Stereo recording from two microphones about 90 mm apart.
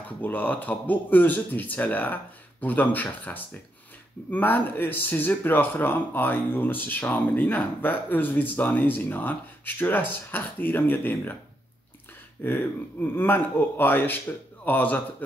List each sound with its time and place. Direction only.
0.2 s speech: 20° left (ahead or behind)
12.4 s speech: 25° left (ahead or behind)